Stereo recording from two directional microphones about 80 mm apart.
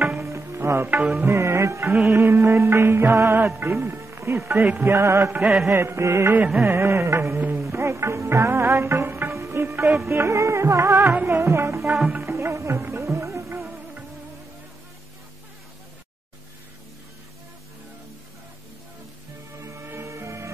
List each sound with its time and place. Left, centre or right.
0.2 s music: right
0.8 s tabla: centre
1.2 s tabla: right
2.0 s music: right
4.6 s music: right
4.9 s music: right
11.0 s music: right
11.9 s music: centre
12.3 s music: right
19.5 s music: right